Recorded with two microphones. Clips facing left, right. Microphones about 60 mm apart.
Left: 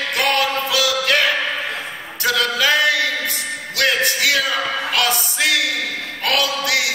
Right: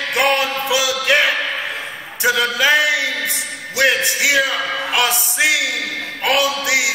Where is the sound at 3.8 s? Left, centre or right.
Centre.